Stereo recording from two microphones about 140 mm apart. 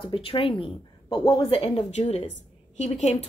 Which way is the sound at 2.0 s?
50° left (ahead or behind).